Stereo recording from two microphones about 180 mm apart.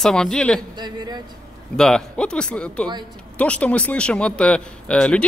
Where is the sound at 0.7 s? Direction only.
25° right (ahead or behind).